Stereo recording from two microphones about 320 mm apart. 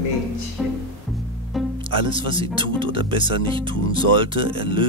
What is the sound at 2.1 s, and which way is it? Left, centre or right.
Speech, centre.